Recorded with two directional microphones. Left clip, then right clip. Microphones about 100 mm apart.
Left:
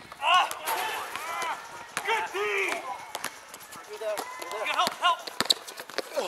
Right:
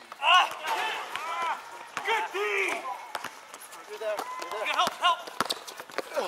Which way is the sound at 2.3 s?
5° right (ahead or behind).